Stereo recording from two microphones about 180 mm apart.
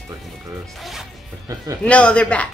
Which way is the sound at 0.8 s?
Centre (ahead or behind).